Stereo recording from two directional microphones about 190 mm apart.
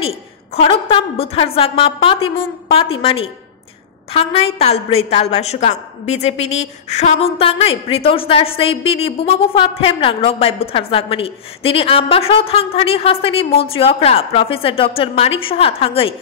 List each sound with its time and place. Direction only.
0.6 s a woman's voice: 30° left (ahead or behind)